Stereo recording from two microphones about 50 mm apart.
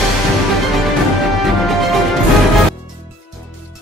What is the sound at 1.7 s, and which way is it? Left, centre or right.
Music, centre.